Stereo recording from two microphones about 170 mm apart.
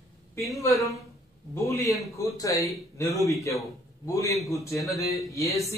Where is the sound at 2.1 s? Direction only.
20° left (ahead or behind).